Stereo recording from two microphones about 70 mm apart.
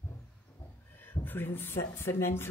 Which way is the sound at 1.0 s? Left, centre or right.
Left.